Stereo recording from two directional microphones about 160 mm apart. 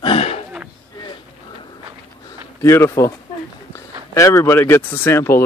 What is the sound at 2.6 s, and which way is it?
Speech, 15° left (ahead or behind).